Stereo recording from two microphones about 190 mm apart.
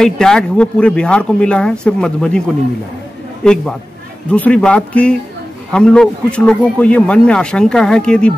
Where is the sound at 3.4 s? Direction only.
5° left (ahead or behind).